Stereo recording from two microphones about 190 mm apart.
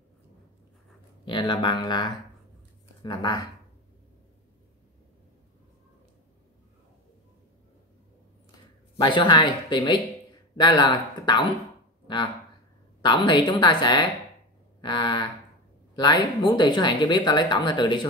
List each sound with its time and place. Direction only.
1.2 s speech: 25° left (ahead or behind)
8.9 s speech: 25° left (ahead or behind)
13.0 s speech: 25° left (ahead or behind)